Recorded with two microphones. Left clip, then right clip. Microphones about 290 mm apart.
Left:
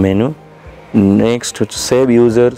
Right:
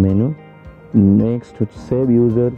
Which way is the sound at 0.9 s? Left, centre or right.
Left.